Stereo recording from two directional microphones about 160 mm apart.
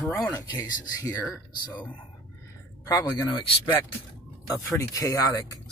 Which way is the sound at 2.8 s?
20° left (ahead or behind).